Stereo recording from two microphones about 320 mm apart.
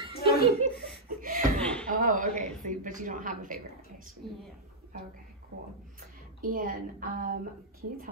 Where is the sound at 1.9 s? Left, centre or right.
Right.